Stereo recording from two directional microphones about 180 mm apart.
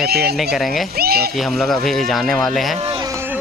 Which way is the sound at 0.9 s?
60° right (ahead or behind).